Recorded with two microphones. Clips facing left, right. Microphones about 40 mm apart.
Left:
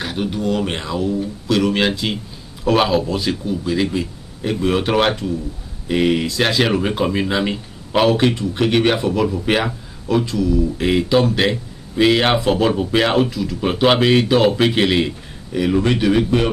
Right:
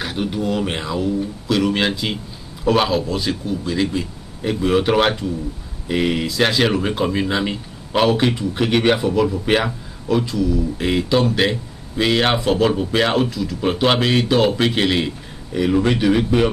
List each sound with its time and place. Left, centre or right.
0.0 s speech: centre